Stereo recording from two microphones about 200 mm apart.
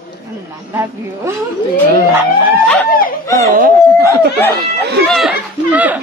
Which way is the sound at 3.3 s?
15° left (ahead or behind).